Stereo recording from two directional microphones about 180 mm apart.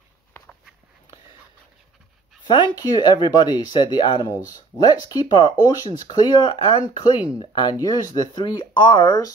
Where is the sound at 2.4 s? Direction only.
25° left (ahead or behind).